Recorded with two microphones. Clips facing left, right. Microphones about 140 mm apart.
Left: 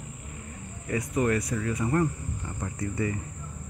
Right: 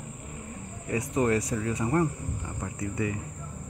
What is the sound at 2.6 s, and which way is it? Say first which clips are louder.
Speech: left 1 dB; 5° right (ahead or behind).